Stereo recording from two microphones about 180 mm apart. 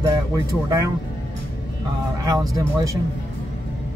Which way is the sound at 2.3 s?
20° right (ahead or behind).